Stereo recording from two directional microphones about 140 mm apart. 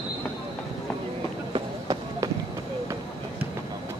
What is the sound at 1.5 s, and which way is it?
Run, 30° right (ahead or behind).